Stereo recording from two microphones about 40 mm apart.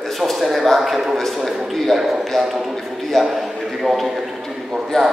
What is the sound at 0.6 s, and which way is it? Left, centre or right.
A man's voice, centre.